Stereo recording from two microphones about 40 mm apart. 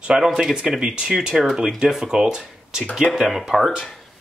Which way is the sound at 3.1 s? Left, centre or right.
Centre.